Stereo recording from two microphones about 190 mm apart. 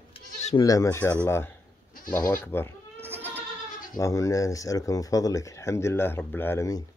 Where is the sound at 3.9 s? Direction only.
15° left (ahead or behind).